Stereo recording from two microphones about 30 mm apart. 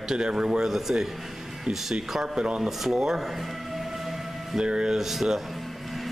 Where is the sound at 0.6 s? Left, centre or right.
Centre.